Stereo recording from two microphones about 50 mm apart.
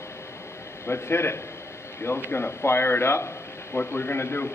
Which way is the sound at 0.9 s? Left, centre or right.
Left.